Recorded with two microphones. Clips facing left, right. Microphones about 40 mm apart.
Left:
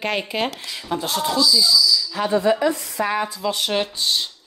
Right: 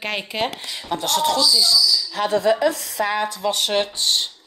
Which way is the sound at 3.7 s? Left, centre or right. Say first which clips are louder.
Right 1 dB; right.